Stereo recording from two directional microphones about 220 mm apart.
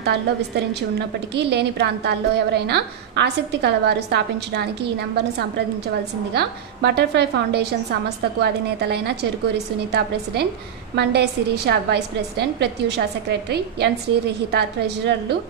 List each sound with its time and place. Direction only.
0.0 s a woman's voice: 50° right (ahead or behind)
6.3 s a woman's voice: 50° right (ahead or behind)